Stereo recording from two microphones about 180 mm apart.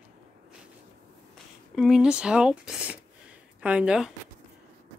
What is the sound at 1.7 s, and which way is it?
Speech, centre (ahead or behind).